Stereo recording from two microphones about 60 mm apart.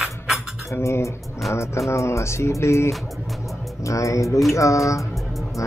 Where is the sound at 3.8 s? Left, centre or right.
Left.